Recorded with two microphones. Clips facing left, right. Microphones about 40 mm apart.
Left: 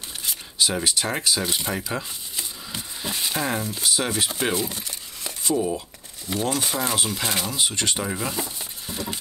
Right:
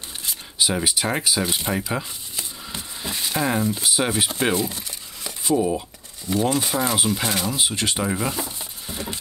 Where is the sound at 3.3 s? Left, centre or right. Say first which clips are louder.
Right 7 dB; centre.